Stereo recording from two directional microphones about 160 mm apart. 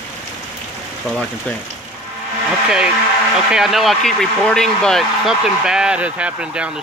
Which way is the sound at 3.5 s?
Centre (ahead or behind).